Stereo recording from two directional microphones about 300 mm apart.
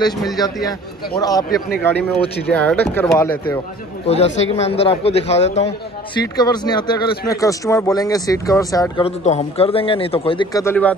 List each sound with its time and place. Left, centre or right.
0.7 s speech: centre
4.1 s a man's voice: left